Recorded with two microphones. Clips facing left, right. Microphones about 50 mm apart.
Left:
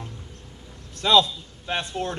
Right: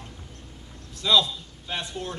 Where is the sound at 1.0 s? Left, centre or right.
Left.